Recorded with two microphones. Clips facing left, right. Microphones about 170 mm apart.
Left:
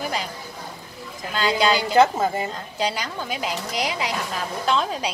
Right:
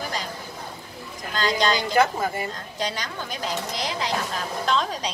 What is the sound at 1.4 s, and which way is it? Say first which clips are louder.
Speech: left 2 dB; 10° left (ahead or behind).